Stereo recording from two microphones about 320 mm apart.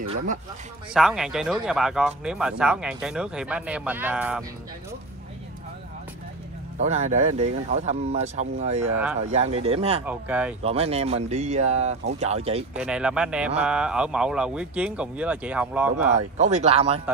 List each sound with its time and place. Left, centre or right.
0.9 s speech: centre
6.8 s speech: right
10.0 s speech: centre
10.6 s speech: centre
12.7 s speech: centre
16.2 s speech: right